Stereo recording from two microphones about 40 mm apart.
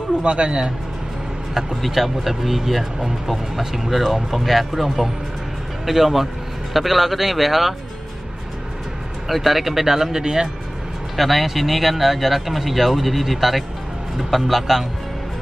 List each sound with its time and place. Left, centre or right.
0.2 s speech: right
1.5 s speech: centre
9.3 s speech: centre
11.1 s speech: centre